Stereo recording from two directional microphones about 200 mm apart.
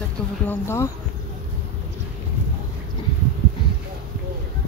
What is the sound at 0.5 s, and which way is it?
Speech, 10° left (ahead or behind).